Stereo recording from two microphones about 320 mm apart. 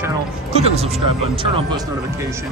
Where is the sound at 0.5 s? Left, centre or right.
Centre.